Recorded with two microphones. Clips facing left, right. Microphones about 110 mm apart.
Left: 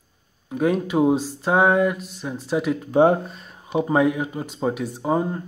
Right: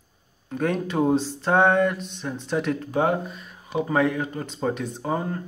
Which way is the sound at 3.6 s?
20° left (ahead or behind).